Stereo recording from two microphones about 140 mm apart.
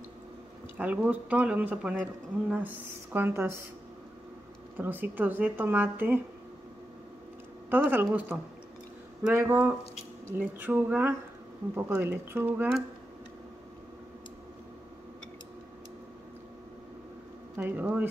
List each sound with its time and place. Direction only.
0.7 s speech: 10° right (ahead or behind)
4.7 s speech: 15° right (ahead or behind)
7.7 s speech: 15° right (ahead or behind)
17.6 s speech: 10° right (ahead or behind)